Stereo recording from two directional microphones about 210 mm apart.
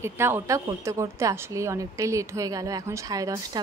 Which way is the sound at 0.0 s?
10° right (ahead or behind).